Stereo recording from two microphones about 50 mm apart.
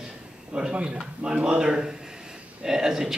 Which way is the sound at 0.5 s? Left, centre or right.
Right.